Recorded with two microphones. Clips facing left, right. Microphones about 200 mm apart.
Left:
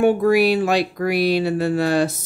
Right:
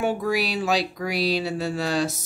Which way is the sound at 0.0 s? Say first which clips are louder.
Left 9 dB; 55° left (ahead or behind).